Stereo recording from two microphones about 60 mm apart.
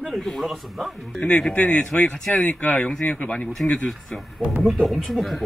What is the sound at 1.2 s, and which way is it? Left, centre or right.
Speech, centre.